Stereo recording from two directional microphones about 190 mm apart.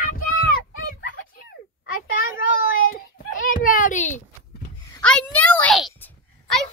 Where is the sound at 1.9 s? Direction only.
45° left (ahead or behind).